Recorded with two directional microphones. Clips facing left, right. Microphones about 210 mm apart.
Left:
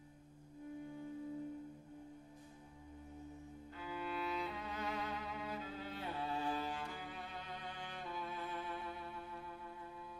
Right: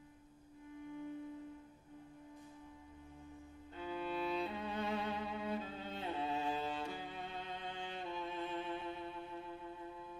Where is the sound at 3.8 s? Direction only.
25° right (ahead or behind).